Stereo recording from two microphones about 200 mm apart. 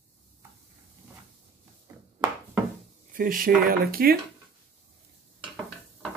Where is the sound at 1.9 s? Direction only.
15° right (ahead or behind).